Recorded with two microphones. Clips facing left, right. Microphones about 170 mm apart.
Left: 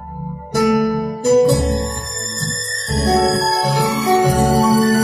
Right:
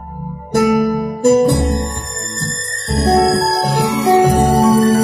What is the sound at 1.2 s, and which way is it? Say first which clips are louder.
Music: right 1 dB; 55° right (ahead or behind).